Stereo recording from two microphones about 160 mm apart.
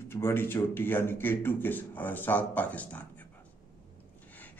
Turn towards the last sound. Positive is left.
turn(degrees=10)  # may be behind; listen again after turning